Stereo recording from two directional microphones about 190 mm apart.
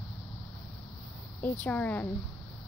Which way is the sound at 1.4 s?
10° left (ahead or behind).